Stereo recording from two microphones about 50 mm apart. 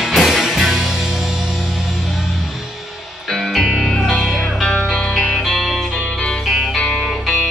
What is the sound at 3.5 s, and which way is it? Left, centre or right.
Music, centre.